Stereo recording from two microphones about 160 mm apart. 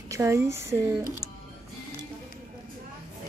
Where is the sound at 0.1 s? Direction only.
15° right (ahead or behind).